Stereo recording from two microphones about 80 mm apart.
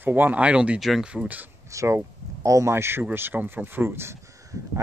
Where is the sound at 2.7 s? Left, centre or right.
Right.